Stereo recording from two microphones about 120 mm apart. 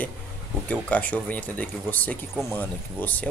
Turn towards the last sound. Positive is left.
turn(degrees=15)  # may be behind; listen again after turning